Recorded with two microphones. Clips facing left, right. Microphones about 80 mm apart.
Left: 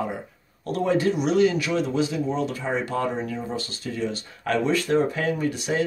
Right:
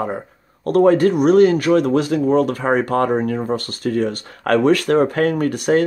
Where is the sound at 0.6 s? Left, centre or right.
Right.